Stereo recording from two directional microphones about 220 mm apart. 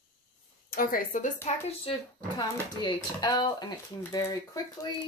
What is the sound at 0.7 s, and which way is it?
Speech, 40° left (ahead or behind).